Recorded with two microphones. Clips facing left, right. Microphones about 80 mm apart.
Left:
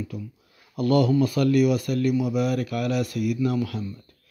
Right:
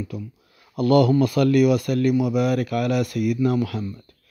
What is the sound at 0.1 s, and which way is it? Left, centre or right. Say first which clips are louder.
A man's voice: right 2 dB; right.